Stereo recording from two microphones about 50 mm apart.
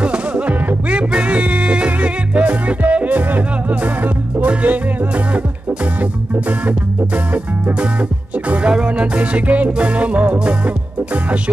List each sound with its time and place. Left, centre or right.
0.0 s music: right
8.5 s music: right